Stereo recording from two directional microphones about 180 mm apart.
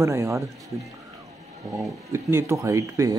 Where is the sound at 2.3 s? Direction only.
15° right (ahead or behind).